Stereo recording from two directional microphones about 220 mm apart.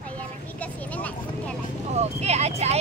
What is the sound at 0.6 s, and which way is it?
Speech, 5° left (ahead or behind).